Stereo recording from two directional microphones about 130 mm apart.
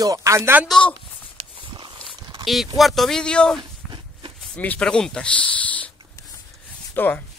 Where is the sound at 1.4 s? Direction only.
40° right (ahead or behind).